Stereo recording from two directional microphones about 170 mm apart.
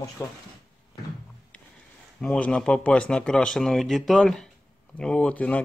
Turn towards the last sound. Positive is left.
turn(degrees=10)  # may be behind; listen again after turning